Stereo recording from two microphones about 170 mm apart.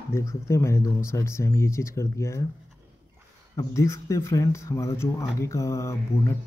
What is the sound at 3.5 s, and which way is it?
Speech, 15° left (ahead or behind).